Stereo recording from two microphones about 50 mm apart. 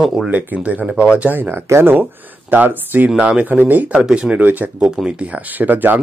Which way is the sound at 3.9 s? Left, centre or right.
Centre.